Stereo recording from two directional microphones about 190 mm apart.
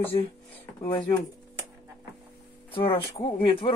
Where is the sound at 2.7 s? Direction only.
25° left (ahead or behind).